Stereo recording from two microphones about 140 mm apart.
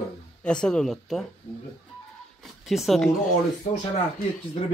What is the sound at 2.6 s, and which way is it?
Speech, centre (ahead or behind).